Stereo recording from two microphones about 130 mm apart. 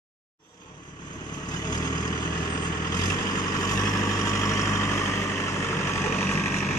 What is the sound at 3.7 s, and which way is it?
Vehicle, 25° left (ahead or behind).